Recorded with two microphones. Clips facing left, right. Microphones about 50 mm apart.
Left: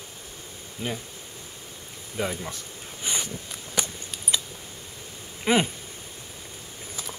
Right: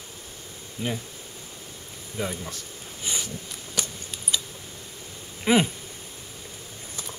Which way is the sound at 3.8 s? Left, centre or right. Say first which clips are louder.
Left 2 dB; left.